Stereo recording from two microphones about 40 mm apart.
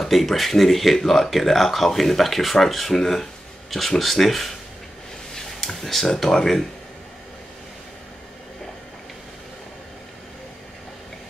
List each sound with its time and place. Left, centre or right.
0.0 s speech: centre